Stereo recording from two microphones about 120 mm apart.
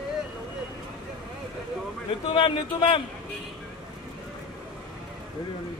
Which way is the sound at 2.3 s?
45° left (ahead or behind).